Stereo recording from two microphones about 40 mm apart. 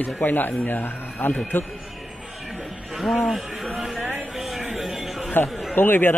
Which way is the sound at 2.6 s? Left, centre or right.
Centre.